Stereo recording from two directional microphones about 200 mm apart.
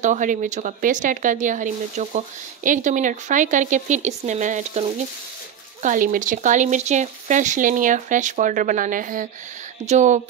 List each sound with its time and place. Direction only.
0.0 s speech: 40° right (ahead or behind)